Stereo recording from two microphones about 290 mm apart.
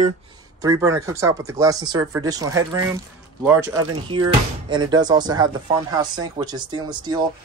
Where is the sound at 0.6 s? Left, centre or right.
Centre.